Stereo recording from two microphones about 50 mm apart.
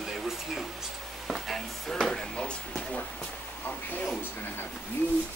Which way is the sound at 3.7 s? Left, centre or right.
Left.